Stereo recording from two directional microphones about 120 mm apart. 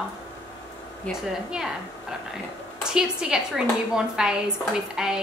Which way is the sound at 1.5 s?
5° right (ahead or behind).